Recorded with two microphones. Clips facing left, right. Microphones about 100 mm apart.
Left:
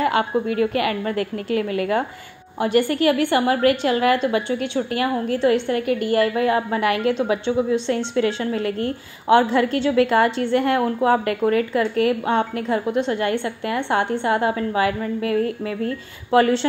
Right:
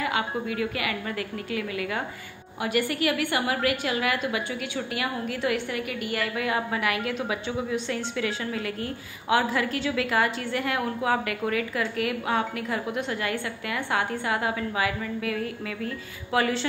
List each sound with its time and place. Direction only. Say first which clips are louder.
0.0 s a woman's voice: left 8 dB; 40° left (ahead or behind)